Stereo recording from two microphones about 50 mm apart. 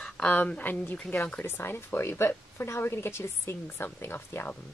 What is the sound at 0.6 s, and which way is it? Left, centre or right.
A woman's voice, left.